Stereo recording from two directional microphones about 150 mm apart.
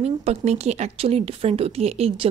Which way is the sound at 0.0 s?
45° right (ahead or behind).